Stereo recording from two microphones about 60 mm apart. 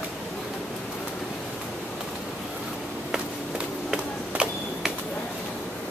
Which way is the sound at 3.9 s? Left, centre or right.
Centre.